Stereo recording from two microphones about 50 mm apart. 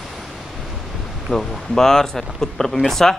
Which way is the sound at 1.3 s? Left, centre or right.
Centre.